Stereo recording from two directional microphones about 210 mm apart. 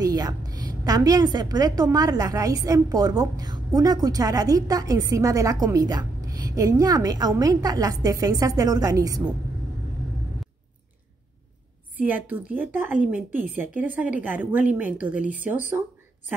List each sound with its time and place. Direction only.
0.0 s a sound: 20° right (ahead or behind)
0.8 s a woman's voice: 20° right (ahead or behind)
12.0 s a woman's voice: 10° right (ahead or behind)